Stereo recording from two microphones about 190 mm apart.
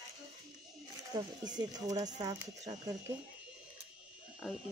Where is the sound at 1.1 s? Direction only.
20° right (ahead or behind).